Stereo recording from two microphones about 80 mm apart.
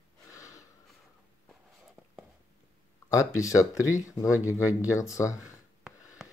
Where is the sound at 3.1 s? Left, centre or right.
Left.